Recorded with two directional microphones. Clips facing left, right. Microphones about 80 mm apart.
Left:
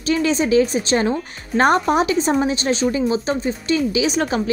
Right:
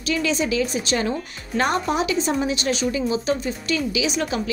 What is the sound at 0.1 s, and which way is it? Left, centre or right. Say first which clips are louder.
Speech: left 6 dB; left.